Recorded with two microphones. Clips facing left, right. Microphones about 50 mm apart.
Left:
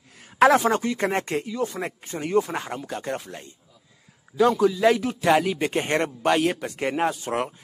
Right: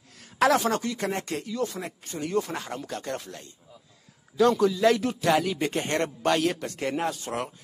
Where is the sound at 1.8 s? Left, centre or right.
Left.